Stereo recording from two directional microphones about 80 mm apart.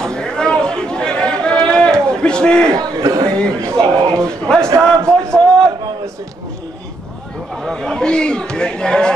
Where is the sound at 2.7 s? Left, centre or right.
Right.